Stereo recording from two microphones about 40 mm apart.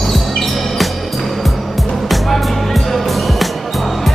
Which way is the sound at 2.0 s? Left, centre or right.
Centre.